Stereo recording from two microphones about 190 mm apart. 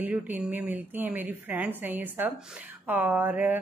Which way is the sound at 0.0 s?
10° right (ahead or behind).